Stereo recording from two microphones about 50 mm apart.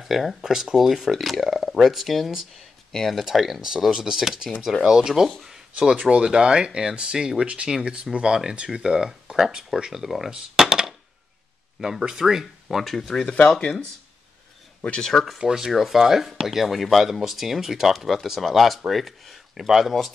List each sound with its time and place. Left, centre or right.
0.0 s speech: centre
10.3 s a sound: centre
11.8 s speech: centre
14.9 s speech: centre
15.3 s speech: centre